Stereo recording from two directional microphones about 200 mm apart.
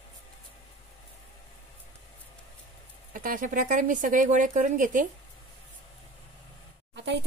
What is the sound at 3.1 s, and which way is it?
Speech, 40° right (ahead or behind).